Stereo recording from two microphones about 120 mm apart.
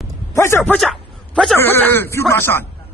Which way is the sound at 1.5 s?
15° left (ahead or behind).